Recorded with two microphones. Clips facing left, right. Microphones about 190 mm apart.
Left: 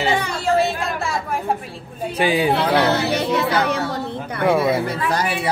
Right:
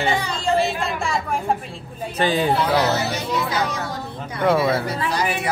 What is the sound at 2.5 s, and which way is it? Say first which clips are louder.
Speech: left 2 dB; 65° left (ahead or behind).